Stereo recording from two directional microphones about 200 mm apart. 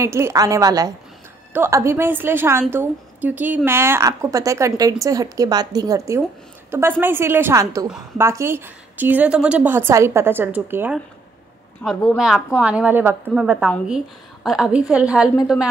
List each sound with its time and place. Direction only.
0.0 s a woman's voice: 15° right (ahead or behind)
11.8 s a woman's voice: 5° left (ahead or behind)